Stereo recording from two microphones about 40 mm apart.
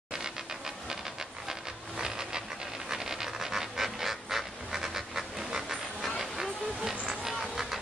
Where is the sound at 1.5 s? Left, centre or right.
Centre.